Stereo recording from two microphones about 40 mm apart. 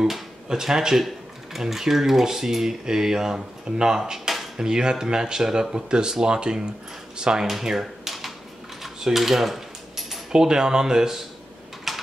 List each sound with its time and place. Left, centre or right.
0.5 s speech: centre
7.4 s typewriter: centre
8.8 s a sound: centre
10.3 s speech: centre
11.9 s typing: centre